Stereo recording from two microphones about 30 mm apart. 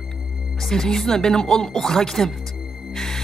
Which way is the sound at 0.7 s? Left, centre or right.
Centre.